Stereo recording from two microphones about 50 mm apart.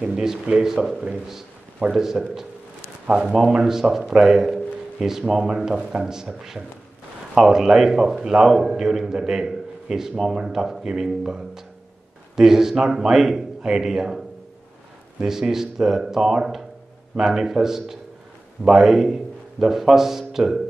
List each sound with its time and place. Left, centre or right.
0.0 s a man's voice: centre
2.0 s a man's voice: centre
15.2 s a man's voice: centre